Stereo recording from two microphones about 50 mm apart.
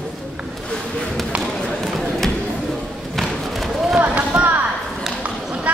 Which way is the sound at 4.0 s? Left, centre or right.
Right.